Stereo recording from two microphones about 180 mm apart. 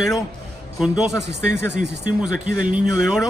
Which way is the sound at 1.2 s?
70° right (ahead or behind).